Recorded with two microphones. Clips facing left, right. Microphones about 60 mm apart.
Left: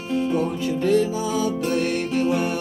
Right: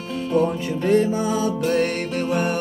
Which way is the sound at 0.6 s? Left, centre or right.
Right.